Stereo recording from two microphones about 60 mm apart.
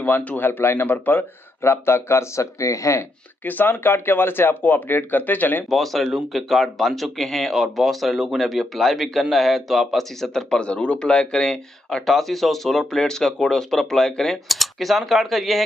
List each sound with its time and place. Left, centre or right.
0.0 s speech: left
1.6 s speech: left
3.4 s speech: left
5.7 s speech: centre